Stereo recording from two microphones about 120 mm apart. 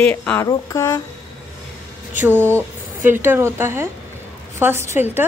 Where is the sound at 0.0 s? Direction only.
10° left (ahead or behind).